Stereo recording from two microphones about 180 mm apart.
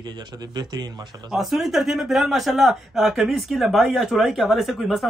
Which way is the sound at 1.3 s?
Centre (ahead or behind).